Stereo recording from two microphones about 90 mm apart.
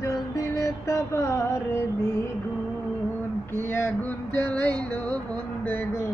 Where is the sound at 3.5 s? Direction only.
25° left (ahead or behind).